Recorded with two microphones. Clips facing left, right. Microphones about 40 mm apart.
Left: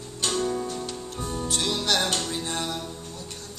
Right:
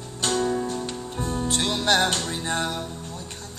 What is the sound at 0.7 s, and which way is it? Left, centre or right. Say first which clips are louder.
Music: right 3 dB; right.